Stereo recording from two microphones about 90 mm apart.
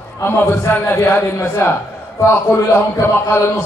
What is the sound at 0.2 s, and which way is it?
A man's voice, 25° left (ahead or behind).